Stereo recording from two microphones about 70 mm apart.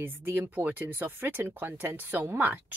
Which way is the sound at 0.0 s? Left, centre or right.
Right.